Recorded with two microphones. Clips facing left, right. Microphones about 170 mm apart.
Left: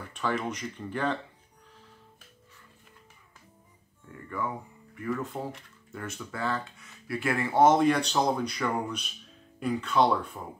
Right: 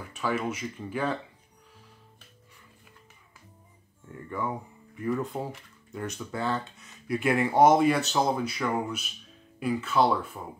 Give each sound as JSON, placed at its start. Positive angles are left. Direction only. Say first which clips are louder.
{"t": 0.0, "sound": "speech", "louder": "right 1 dB", "side_deg": -5}
{"t": 4.3, "sound": "speech", "louder": "right 1 dB", "side_deg": -20}